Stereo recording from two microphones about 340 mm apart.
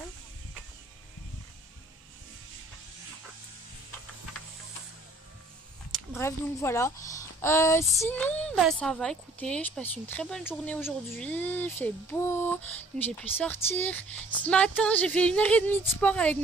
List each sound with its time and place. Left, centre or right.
5.9 s speech: centre